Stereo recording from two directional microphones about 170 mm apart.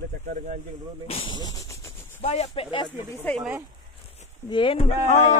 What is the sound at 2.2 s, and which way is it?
Speech, 35° left (ahead or behind).